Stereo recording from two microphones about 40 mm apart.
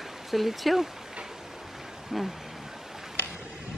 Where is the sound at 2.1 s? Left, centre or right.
Centre.